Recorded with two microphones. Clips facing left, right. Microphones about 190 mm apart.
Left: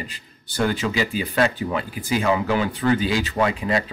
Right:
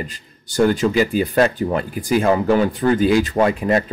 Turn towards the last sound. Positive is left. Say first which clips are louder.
# right 5 dB
turn(degrees=-50)  # may be behind; listen again after turning